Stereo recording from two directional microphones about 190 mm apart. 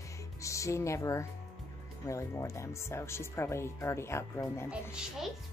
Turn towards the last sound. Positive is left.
turn(degrees=-5)  # may be behind; listen again after turning